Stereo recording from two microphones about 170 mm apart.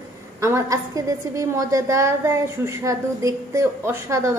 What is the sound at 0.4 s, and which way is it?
A woman's voice, 15° right (ahead or behind).